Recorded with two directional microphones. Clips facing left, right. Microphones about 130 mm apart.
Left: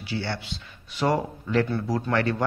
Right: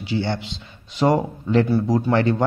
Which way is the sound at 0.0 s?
20° right (ahead or behind).